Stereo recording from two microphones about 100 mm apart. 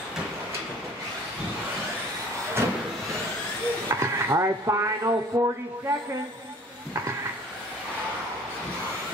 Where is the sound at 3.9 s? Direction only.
30° right (ahead or behind).